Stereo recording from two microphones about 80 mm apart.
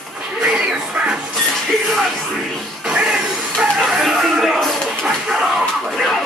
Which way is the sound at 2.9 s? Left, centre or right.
Centre.